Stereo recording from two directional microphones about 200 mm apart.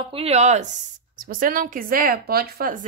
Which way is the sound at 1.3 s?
45° right (ahead or behind).